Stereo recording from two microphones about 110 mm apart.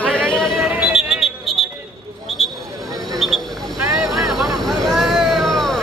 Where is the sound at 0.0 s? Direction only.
10° left (ahead or behind).